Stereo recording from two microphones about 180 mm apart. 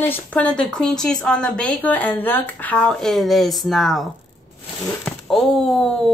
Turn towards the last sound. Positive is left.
turn(degrees=5)  # may be behind; listen again after turning